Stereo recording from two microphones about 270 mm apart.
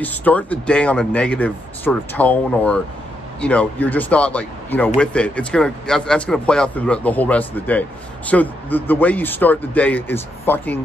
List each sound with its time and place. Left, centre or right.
0.0 s speech: centre